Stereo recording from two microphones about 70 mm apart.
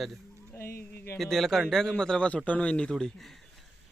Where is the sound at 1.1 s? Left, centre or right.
Centre.